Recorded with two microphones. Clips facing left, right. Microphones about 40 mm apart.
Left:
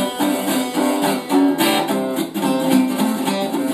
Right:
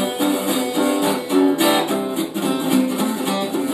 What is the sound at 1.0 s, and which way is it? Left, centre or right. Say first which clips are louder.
Music: left 2 dB; left.